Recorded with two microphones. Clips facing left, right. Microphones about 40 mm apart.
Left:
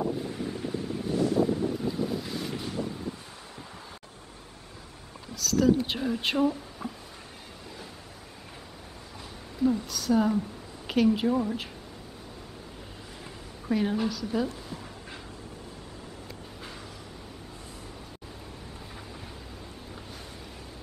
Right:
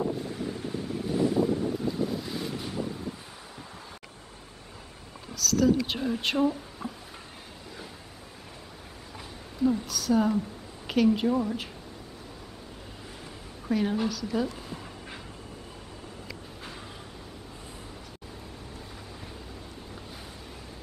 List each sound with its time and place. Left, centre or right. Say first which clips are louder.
0.0 s wind: even; centre
1.1 s wind: even; centre
1.4 s boat: even; centre
5.3 s a sound: even; centre
5.9 s speech: even; centre
9.6 s a woman's voice: even; centre
13.7 s a woman's voice: even; centre
14.7 s a sound: even; right